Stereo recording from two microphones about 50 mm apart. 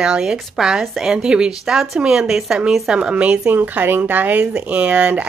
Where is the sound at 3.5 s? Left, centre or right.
Right.